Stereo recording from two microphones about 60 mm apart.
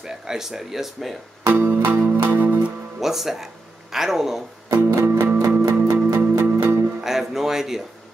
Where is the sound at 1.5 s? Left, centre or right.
Right.